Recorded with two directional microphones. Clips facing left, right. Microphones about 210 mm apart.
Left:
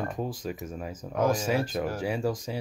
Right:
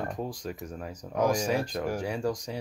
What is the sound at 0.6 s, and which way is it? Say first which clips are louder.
Speech: left 2 dB; 5° left (ahead or behind).